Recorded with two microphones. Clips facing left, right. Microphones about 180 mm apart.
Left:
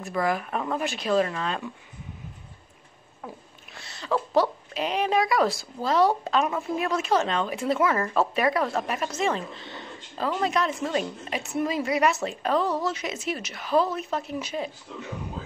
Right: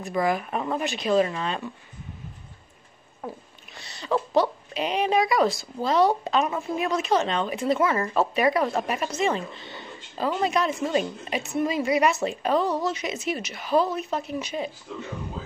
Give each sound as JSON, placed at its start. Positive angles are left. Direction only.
{"t": 0.2, "sound": "a woman's voice", "side_deg": -5}
{"t": 3.7, "sound": "a woman's voice", "side_deg": 0}